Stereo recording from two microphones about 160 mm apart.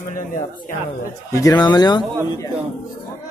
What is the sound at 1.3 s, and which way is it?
Speech, 20° left (ahead or behind).